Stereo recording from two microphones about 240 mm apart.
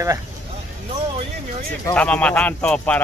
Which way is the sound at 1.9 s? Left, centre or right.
Centre.